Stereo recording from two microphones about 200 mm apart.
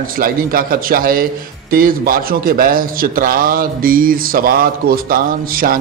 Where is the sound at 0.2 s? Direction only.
45° right (ahead or behind).